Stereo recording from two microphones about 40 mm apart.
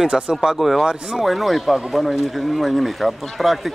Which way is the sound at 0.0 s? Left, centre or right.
Centre.